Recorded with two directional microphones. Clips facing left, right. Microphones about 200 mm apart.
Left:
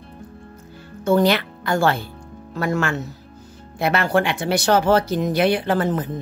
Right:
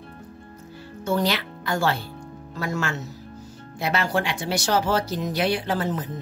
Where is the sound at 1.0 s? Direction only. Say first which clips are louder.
Left 7 dB; 55° left (ahead or behind).